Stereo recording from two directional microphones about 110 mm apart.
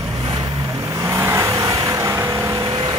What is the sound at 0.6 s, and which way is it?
Vehicle, 30° right (ahead or behind).